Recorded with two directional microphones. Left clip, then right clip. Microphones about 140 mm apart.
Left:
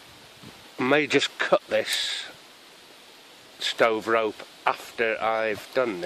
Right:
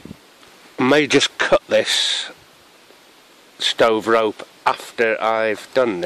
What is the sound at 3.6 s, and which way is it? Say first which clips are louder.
Speech: right 7 dB; 75° right (ahead or behind).